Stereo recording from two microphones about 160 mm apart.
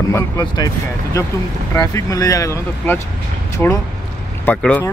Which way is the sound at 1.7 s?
20° left (ahead or behind).